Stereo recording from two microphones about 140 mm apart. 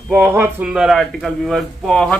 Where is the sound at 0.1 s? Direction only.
15° right (ahead or behind).